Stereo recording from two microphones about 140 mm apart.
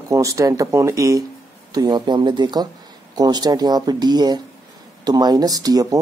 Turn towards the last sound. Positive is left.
turn(degrees=-25)  # may be behind; listen again after turning